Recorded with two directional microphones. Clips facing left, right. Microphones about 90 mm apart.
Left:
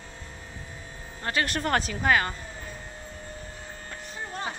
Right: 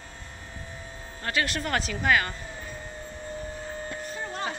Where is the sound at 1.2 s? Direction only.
35° left (ahead or behind).